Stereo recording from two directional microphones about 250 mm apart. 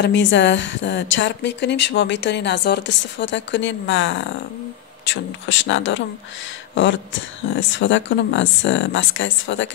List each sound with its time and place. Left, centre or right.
0.0 s a woman's voice: left